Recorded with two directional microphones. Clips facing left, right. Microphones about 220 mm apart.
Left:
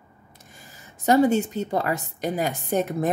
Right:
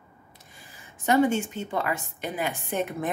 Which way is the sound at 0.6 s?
40° left (ahead or behind).